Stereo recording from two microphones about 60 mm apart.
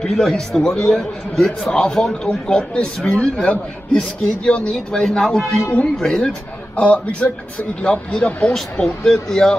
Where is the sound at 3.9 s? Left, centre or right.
Centre.